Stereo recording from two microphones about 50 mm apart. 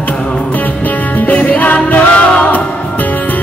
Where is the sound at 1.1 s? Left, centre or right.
Left.